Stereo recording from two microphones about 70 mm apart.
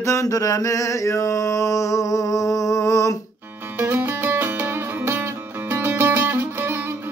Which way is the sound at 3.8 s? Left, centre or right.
Right.